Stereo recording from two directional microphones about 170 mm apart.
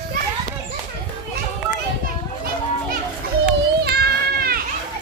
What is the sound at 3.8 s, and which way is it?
Children playing, 65° right (ahead or behind).